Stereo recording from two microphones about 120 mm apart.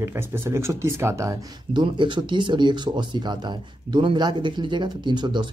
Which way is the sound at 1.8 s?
40° right (ahead or behind).